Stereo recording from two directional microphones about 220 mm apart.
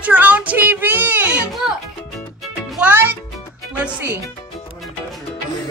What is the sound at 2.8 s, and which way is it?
Music, 10° right (ahead or behind).